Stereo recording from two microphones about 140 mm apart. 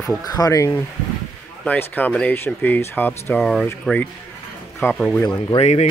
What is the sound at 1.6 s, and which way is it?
Speech, 10° left (ahead or behind).